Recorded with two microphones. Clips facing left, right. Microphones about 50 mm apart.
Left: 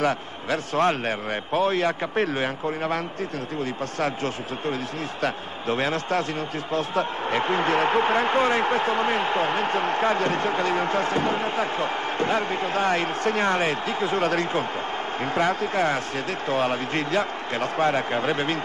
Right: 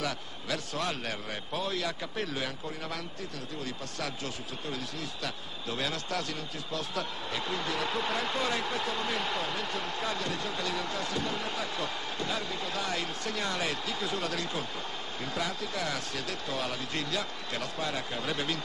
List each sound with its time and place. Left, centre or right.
0.0 s a man's voice: left